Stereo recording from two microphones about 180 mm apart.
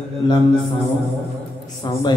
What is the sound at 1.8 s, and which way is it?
Speech, 25° left (ahead or behind).